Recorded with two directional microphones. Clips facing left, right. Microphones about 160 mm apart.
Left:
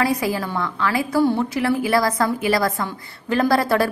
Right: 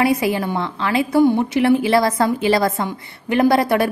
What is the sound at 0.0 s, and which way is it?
A woman's voice, 25° right (ahead or behind).